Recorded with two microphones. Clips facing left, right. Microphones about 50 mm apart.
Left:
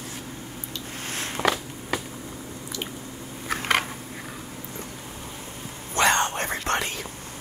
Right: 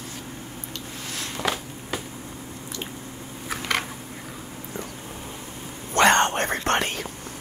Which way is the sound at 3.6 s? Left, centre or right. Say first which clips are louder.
Left 3 dB; left.